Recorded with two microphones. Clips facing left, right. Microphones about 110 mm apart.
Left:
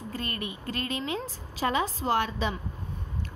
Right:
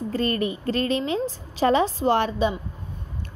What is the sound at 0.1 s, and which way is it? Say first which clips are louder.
A woman's voice: right 11 dB; 35° right (ahead or behind).